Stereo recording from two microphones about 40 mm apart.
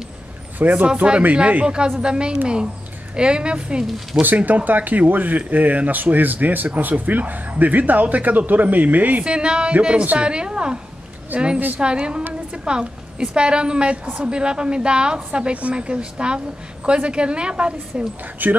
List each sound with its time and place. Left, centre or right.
0.6 s speech: right
2.0 s a woman's voice: right
4.2 s speech: right
9.2 s a woman's voice: right
18.4 s speech: right